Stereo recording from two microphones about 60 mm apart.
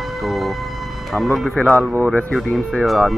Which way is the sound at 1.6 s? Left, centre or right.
Left.